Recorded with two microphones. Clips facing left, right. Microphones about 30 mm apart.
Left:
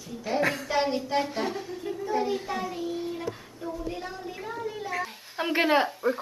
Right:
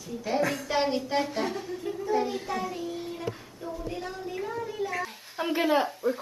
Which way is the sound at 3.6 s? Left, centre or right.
Centre.